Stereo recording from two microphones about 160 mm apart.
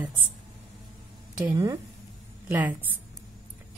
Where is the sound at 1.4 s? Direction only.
20° right (ahead or behind).